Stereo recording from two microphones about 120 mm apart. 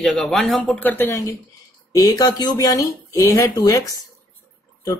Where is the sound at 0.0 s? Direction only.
5° left (ahead or behind).